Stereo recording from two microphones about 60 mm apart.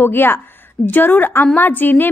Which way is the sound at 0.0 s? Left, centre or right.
Left.